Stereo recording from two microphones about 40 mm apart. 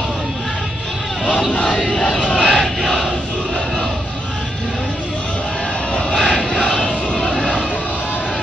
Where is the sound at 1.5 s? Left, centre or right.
Left.